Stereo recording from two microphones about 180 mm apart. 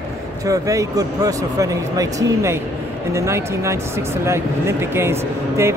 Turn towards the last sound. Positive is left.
turn(degrees=-15)  # may be behind; listen again after turning